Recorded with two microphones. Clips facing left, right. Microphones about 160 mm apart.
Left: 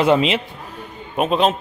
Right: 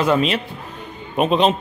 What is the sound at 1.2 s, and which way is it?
Speech, 5° left (ahead or behind).